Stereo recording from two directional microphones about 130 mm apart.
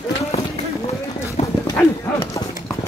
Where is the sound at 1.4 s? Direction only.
65° left (ahead or behind).